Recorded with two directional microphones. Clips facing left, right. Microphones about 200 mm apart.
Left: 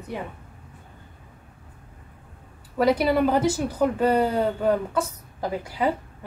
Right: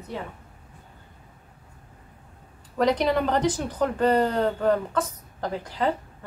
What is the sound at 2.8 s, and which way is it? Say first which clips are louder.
A woman's voice: left 2 dB; 5° left (ahead or behind).